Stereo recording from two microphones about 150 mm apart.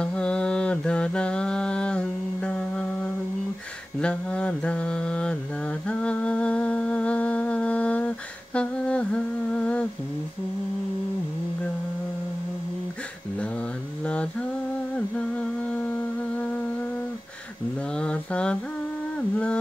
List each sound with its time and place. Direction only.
0.0 s mantra: 5° left (ahead or behind)
8.5 s humming: 5° left (ahead or behind)
14.0 s mantra: 10° left (ahead or behind)
15.0 s humming: 10° left (ahead or behind)
17.9 s a sound: 5° left (ahead or behind)